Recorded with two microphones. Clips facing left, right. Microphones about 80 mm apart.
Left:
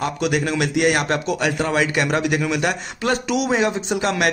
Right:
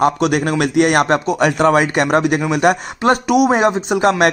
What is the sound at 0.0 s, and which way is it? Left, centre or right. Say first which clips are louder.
A man's voice: right 6 dB; right.